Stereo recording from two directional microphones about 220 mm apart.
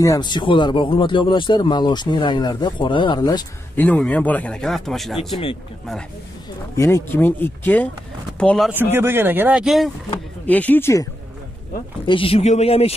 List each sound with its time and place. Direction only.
0.0 s speech: 15° left (ahead or behind); by 5.4 s centre (ahead or behind)
6.8 s speech: 10° left (ahead or behind)
12.1 s speech: 25° left (ahead or behind)